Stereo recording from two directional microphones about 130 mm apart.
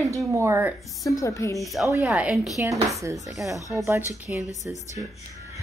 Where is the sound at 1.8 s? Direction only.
25° right (ahead or behind).